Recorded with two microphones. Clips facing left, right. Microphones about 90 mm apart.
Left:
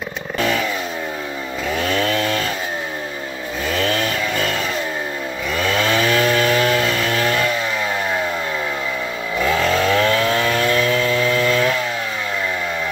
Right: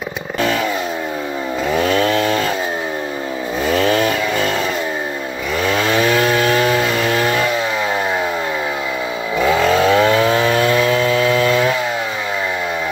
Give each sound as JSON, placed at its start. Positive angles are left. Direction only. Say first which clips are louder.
{"t": 1.8, "sound": "chainsaw", "louder": "right 4 dB", "side_deg": -25}
{"t": 5.6, "sound": "chainsaw", "louder": "right 2 dB", "side_deg": -5}
{"t": 9.4, "sound": "chainsaw", "louder": "right 4 dB", "side_deg": -15}